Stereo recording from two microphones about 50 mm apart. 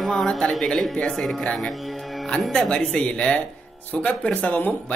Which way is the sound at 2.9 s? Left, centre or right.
Left.